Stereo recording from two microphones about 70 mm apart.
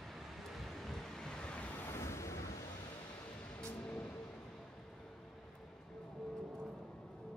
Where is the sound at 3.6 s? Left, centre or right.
Centre.